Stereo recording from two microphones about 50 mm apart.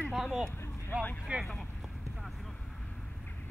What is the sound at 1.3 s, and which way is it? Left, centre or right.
Speech, right.